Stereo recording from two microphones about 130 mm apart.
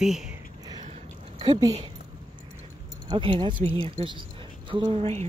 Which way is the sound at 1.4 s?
30° right (ahead or behind).